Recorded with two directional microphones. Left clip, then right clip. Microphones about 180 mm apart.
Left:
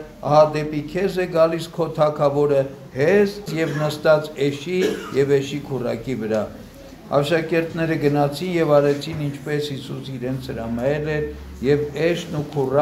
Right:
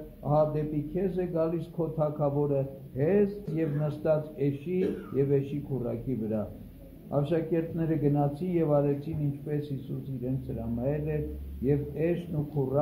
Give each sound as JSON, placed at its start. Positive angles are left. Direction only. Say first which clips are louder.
{"t": 0.3, "sound": "a man's voice", "louder": "left 11 dB", "side_deg": 0}
{"t": 10.8, "sound": "a man's voice", "louder": "left 10 dB", "side_deg": 5}
{"t": 12.6, "sound": "speech", "louder": "left 10 dB", "side_deg": 25}